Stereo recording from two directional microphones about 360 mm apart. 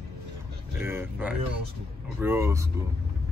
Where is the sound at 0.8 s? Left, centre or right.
Centre.